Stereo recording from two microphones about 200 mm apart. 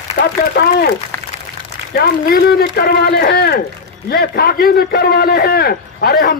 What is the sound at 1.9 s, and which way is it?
A man's voice, 50° left (ahead or behind).